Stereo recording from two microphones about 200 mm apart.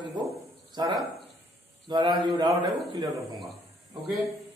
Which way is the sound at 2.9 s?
15° right (ahead or behind).